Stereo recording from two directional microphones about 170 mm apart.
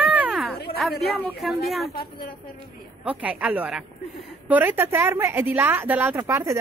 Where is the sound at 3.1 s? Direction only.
10° right (ahead or behind).